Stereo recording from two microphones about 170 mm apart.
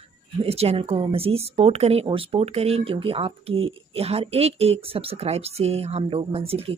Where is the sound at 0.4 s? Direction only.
35° right (ahead or behind).